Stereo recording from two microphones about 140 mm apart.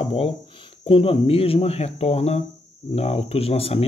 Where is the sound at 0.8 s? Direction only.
40° left (ahead or behind).